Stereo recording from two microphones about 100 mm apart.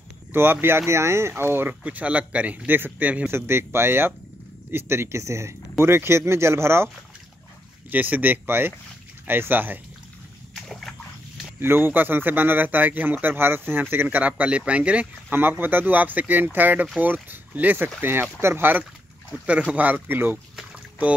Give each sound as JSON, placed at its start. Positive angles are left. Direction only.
{"t": 0.3, "sound": "speech", "side_deg": -20}
{"t": 7.9, "sound": "speech", "side_deg": -15}
{"t": 10.5, "sound": "splash", "side_deg": 5}
{"t": 11.6, "sound": "speech", "side_deg": -20}